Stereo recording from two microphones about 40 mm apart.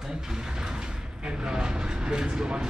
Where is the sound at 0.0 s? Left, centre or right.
Centre.